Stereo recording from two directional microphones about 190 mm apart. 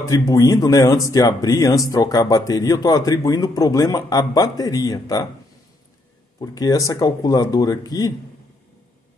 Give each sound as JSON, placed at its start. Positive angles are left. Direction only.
{"t": 0.0, "sound": "speech", "side_deg": 15}
{"t": 6.4, "sound": "speech", "side_deg": 20}